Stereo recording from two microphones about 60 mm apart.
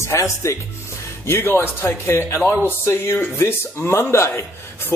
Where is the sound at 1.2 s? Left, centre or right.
Left.